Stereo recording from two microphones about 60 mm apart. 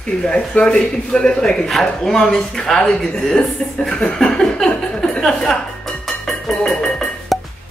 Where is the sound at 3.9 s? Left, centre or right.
Centre.